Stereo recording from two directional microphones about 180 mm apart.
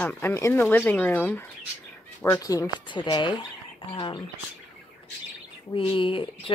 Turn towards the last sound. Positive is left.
turn(degrees=30)  # may be behind; listen again after turning